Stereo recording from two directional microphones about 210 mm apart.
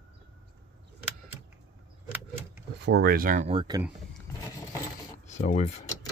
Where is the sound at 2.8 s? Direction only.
50° right (ahead or behind); by 3.8 s 20° right (ahead or behind).